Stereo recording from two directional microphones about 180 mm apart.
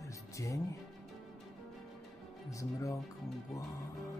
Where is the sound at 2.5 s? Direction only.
15° left (ahead or behind).